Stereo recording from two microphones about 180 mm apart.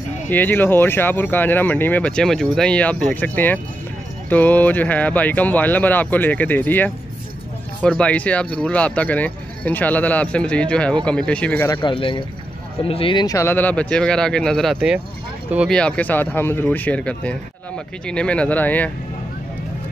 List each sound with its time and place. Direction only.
0.3 s speech: 10° left (ahead or behind)
11.7 s a man's voice: 25° left (ahead or behind); by 15.8 s 5° right (ahead or behind)
15.8 s speech: 10° left (ahead or behind)